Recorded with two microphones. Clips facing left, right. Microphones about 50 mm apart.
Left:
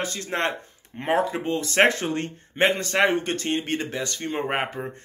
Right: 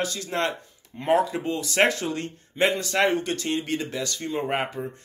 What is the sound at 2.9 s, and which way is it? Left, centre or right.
Speech, left.